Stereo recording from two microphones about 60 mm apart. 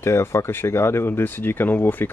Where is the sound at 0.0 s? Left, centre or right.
Left.